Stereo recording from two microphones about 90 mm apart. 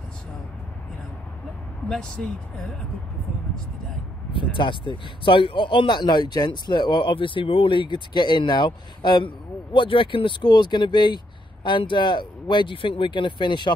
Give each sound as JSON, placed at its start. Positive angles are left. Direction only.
{"t": 1.9, "sound": "speech", "side_deg": 10}
{"t": 4.3, "sound": "speech", "side_deg": 65}